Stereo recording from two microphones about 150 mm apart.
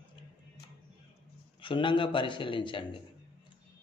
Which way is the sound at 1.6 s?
35° left (ahead or behind).